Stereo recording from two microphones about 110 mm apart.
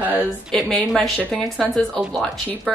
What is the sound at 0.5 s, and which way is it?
A woman's voice, 5° left (ahead or behind).